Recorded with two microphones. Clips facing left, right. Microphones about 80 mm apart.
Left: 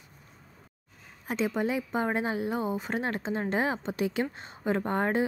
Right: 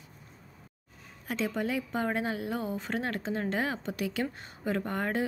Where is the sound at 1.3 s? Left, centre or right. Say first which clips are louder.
Left 3 dB; left.